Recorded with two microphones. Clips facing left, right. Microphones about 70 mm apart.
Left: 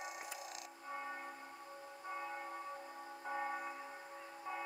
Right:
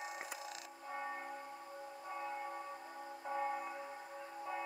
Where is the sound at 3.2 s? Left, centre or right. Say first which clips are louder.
Right 2 dB; centre.